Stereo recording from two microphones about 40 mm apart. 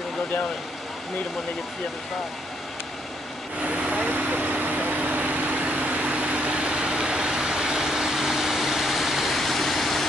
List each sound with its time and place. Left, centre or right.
3.6 s vehicle: right; by 10.0 s centre